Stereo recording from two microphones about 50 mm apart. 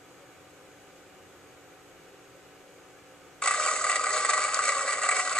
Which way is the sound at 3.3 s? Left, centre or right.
Centre.